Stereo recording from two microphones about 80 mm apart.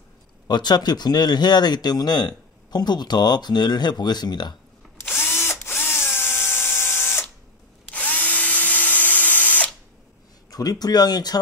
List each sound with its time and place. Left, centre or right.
0.5 s speech: left
5.0 s drill: left
7.9 s drill: centre
10.5 s speech: left